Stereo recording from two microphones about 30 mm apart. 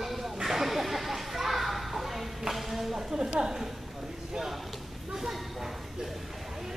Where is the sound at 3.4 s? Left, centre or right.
Centre.